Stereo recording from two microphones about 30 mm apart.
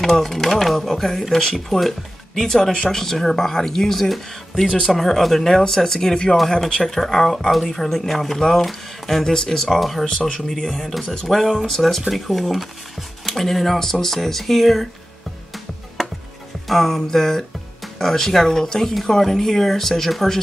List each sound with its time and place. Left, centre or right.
0.0 s speech: centre
6.8 s speech: centre
9.2 s speech: centre
9.6 s speech: centre
10.0 s speech: left
10.7 s speech: centre
11.7 s speech: centre
16.6 s speech: centre